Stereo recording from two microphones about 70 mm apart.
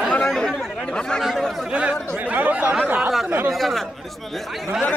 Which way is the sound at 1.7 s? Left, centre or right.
Centre.